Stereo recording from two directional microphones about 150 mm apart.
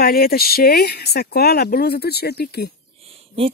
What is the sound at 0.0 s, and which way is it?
Speech, 90° left.